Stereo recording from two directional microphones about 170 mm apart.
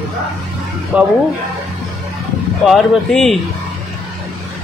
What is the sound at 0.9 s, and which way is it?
Speech, 5° right (ahead or behind).